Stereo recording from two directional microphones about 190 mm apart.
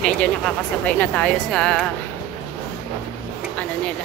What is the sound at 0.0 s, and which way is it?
Speech, 5° left (ahead or behind).